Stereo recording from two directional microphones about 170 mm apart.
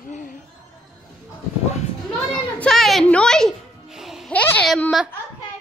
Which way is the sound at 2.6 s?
Centre (ahead or behind).